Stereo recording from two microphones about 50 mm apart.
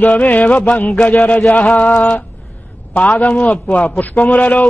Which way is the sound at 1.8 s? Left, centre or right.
Left.